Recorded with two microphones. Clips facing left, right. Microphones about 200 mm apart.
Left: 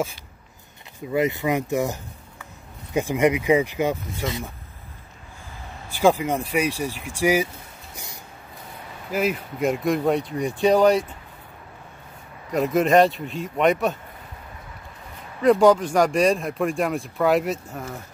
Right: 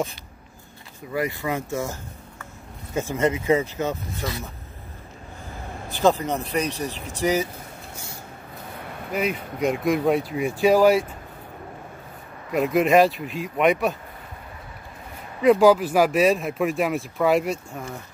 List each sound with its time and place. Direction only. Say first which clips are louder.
1.1 s speech: left 4 dB; 20° left (ahead or behind)
5.9 s speech: left 1 dB; 10° left (ahead or behind)
7.9 s a sound: right 2 dB; 15° left (ahead or behind)
9.1 s speech: left 2 dB; 5° left (ahead or behind)
12.4 s speech: even; centre (ahead or behind)
15.4 s speech: even; centre (ahead or behind)